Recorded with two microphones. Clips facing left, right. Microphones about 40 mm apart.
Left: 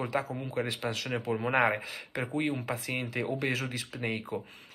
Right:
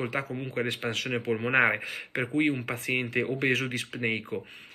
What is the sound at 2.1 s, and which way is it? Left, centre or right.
Speech, right.